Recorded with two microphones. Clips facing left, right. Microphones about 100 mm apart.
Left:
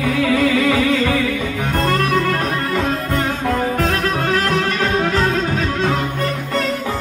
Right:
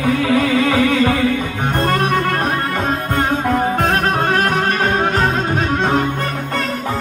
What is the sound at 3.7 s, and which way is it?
Music, 45° right (ahead or behind).